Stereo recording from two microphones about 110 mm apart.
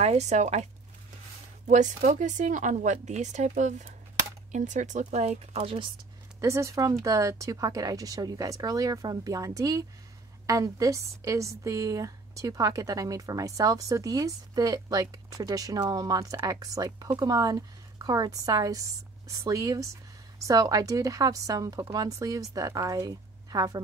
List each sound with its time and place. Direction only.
0.0 s speech: 90° right
1.7 s speech: 90° right; by 5.8 s 75° right (ahead or behind)
6.4 s a woman's voice: 25° right (ahead or behind)